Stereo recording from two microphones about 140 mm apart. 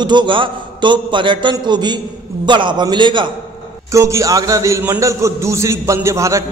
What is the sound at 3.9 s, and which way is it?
A man's voice, 20° right (ahead or behind).